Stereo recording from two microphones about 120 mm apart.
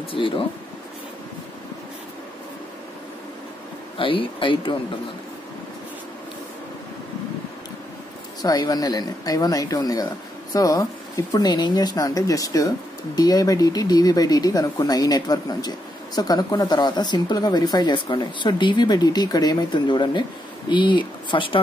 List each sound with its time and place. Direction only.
0.1 s speech: 45° left (ahead or behind)
4.0 s speech: 45° left (ahead or behind)
8.4 s speech: 35° left (ahead or behind)